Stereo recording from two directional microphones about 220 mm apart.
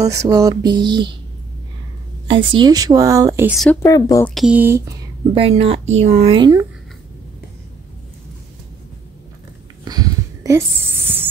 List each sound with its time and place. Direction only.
0.0 s a woman's voice: 15° right (ahead or behind)
2.2 s a woman's voice: 20° right (ahead or behind)
3.8 s speech: 15° left (ahead or behind)
4.3 s a woman's voice: 5° right (ahead or behind)
5.3 s a woman's voice: 25° right (ahead or behind)
9.8 s a sound: 15° right (ahead or behind)